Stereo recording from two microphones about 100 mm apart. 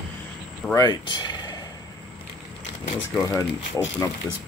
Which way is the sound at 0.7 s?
45° left (ahead or behind).